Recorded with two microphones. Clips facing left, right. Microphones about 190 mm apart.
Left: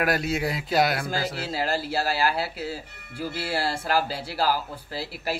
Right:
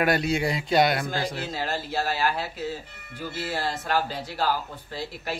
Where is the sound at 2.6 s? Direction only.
30° left (ahead or behind).